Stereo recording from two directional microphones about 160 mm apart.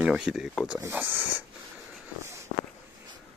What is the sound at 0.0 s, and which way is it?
Speech, centre (ahead or behind).